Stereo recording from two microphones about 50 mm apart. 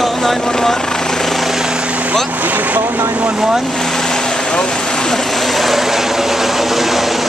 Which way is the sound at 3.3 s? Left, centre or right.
Centre.